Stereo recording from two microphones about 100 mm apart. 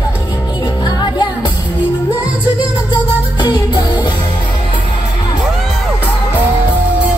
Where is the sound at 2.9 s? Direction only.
50° left (ahead or behind).